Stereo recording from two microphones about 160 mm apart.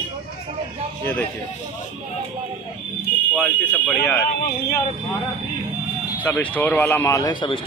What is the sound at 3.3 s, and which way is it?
Speech, 10° left (ahead or behind).